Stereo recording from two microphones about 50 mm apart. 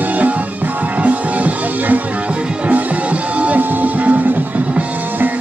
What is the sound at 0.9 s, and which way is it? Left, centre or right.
Music, right.